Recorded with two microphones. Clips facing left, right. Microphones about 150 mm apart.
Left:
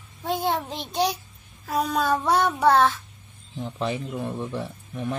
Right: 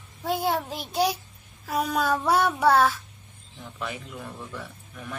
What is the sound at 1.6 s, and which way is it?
Speech, 10° right (ahead or behind).